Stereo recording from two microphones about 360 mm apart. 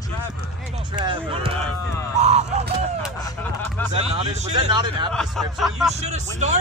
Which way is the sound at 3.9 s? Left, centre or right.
Centre.